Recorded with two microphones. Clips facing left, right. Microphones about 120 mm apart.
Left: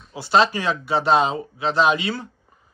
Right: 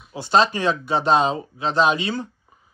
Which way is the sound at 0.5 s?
20° right (ahead or behind).